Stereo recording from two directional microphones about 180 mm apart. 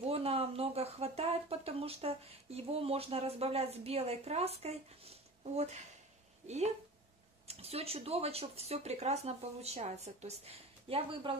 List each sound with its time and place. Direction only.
0.0 s speech: 35° right (ahead or behind)